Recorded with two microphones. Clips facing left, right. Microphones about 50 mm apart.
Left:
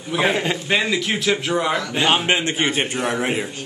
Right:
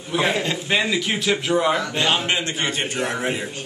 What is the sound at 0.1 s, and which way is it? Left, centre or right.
Speech, centre.